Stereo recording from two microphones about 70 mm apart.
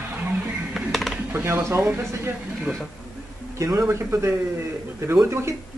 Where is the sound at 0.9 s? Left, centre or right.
Centre.